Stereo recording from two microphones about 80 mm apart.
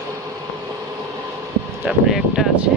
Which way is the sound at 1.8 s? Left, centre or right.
Centre.